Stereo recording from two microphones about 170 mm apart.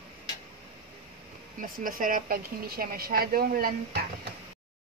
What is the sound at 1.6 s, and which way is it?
A woman's voice, 55° right (ahead or behind).